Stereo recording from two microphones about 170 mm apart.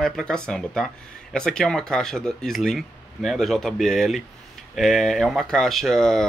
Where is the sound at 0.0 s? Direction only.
5° left (ahead or behind).